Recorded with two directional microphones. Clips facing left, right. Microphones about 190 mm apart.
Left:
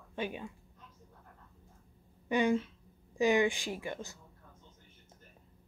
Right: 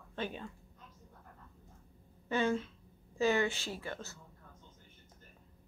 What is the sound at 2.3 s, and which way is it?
A woman's voice, 15° left (ahead or behind).